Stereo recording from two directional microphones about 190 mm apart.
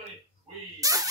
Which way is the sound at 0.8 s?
20° right (ahead or behind).